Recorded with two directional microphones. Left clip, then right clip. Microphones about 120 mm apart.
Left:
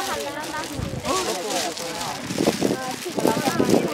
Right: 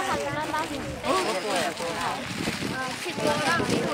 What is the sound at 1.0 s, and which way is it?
Speech, 20° left (ahead or behind).